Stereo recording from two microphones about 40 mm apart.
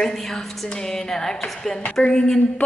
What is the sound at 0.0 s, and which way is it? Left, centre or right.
Speech, centre.